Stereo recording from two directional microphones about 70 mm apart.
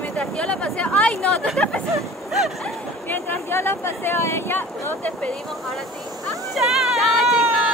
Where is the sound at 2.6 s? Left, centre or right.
Left.